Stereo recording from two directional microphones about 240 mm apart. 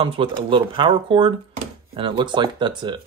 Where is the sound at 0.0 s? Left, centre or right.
Right.